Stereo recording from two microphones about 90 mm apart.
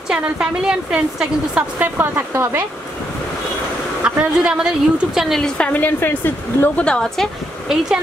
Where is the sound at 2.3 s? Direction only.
30° right (ahead or behind).